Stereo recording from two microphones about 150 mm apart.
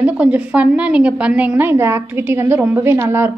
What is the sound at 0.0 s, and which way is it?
A woman's voice, 10° right (ahead or behind).